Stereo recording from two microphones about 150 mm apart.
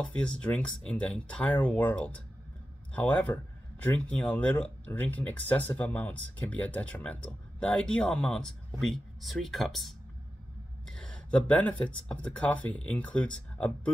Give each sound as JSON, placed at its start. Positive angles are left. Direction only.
{"t": 0.0, "sound": "speech", "side_deg": 5}